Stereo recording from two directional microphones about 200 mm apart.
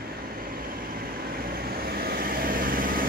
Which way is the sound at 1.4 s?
50° right (ahead or behind).